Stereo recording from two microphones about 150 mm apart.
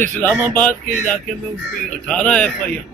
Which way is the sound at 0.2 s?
10° left (ahead or behind).